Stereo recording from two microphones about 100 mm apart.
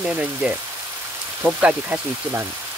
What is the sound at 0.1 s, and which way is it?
Speech, 10° right (ahead or behind).